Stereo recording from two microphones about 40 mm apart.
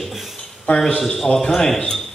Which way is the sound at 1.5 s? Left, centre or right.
Centre.